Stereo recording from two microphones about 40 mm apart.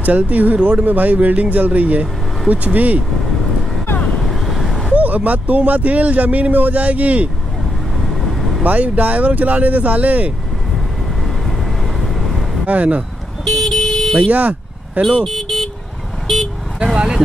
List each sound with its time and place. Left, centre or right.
0.0 s speech: right
0.8 s speech: right
4.3 s vehicle: centre
4.9 s speech: right
8.0 s vehicle: centre
8.6 s speech: right
12.0 s vehicle: centre
12.6 s speech: right
13.5 s vehicle: centre
15.2 s vehicle: centre
16.8 s vehicle: right